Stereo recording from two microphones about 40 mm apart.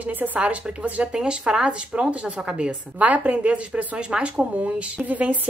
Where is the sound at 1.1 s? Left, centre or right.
Right.